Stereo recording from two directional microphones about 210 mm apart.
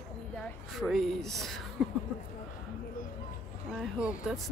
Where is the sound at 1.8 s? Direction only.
Centre (ahead or behind).